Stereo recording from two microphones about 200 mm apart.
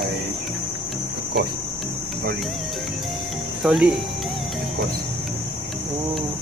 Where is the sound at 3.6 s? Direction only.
Centre (ahead or behind).